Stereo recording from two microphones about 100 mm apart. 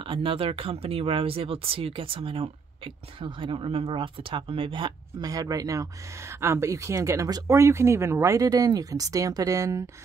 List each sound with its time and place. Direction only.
0.0 s speech: 60° right (ahead or behind)
5.2 s speech: 40° right (ahead or behind)